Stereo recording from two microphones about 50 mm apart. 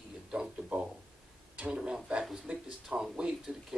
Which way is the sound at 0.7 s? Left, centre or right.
Right.